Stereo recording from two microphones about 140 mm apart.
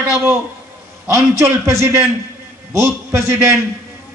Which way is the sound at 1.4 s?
20° right (ahead or behind).